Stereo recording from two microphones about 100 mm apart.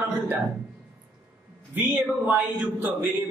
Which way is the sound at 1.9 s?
15° right (ahead or behind).